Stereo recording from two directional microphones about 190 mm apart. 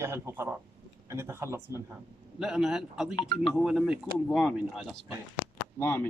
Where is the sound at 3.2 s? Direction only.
20° left (ahead or behind).